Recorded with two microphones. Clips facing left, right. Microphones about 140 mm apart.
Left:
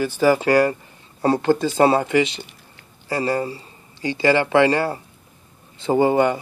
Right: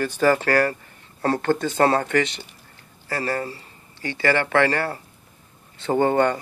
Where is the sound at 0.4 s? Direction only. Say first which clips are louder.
Left 4 dB; 20° left (ahead or behind).